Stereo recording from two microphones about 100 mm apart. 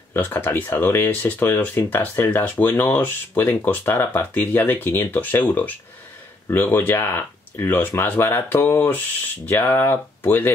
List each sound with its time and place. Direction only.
0.1 s speech: 20° left (ahead or behind)